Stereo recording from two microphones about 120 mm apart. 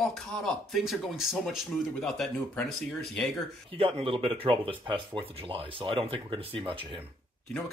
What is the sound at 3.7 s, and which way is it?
Speech, 50° right (ahead or behind).